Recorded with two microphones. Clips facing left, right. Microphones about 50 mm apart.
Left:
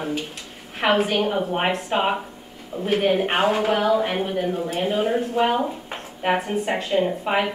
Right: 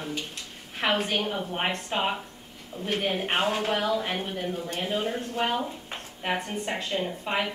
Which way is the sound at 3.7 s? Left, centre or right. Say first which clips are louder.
Left 7 dB; left.